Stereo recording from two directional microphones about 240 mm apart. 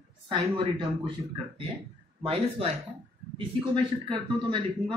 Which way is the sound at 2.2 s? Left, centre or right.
Right.